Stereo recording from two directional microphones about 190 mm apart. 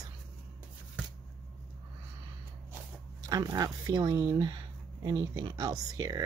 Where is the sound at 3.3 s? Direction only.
20° right (ahead or behind).